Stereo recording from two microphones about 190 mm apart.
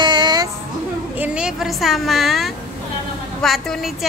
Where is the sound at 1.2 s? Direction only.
5° right (ahead or behind).